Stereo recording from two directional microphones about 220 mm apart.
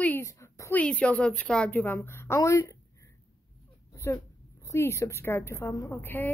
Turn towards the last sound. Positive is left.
turn(degrees=10)  # may be behind; listen again after turning